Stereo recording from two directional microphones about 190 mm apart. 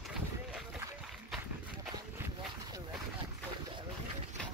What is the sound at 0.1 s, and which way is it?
Boat, 5° right (ahead or behind).